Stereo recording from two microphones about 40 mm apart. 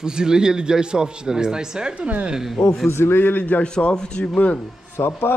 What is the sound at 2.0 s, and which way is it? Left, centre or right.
Speech, right.